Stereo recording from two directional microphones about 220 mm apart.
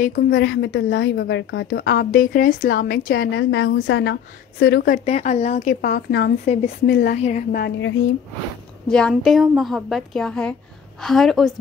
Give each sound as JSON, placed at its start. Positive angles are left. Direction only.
{"t": 0.3, "sound": "a woman's voice", "side_deg": 55}
{"t": 2.0, "sound": "a woman's voice", "side_deg": 40}
{"t": 6.4, "sound": "a woman's voice", "side_deg": 30}
{"t": 6.9, "sound": "a woman's voice", "side_deg": 45}
{"t": 7.2, "sound": "a woman's voice", "side_deg": 30}
{"t": 7.5, "sound": "a woman's voice", "side_deg": 50}
{"t": 8.8, "sound": "a woman's voice", "side_deg": 5}